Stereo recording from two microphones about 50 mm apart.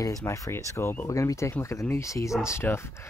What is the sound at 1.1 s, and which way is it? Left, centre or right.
Speech, left.